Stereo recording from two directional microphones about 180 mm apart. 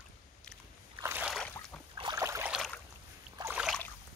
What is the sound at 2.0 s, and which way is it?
Boat, 20° right (ahead or behind).